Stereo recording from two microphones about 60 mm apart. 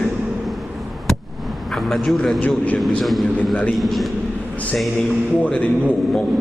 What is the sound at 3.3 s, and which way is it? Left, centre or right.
Speech, left.